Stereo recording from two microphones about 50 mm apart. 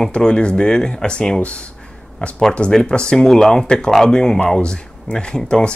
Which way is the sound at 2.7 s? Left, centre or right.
Centre.